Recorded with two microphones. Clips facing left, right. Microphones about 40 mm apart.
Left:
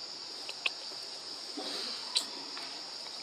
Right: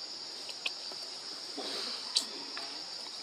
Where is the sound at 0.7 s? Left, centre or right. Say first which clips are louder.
Left 4 dB; left.